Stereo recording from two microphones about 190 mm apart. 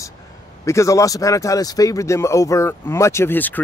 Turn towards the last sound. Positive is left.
turn(degrees=10)  # may be behind; listen again after turning